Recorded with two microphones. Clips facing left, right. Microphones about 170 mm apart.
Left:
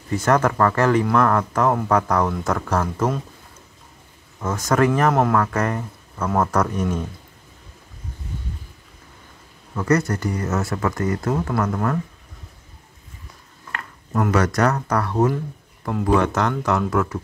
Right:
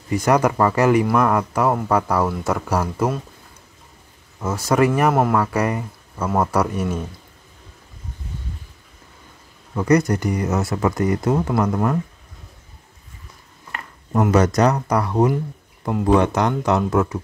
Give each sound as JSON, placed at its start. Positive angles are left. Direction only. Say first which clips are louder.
{"t": 0.1, "sound": "speech", "louder": "right 1 dB", "side_deg": -15}
{"t": 4.4, "sound": "speech", "louder": "right 1 dB", "side_deg": -10}
{"t": 9.8, "sound": "speech", "louder": "right 3 dB", "side_deg": -15}
{"t": 13.7, "sound": "speech", "louder": "right 1 dB", "side_deg": -20}